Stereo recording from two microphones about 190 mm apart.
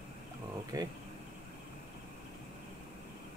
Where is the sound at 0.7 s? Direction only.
20° right (ahead or behind).